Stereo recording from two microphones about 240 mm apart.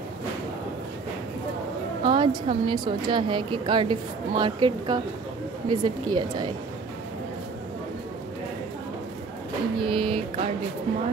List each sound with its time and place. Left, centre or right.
2.0 s a woman's voice: right
9.8 s a woman's voice: right